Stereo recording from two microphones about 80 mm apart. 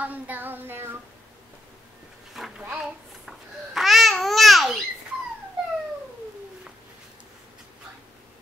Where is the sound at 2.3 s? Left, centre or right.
Centre.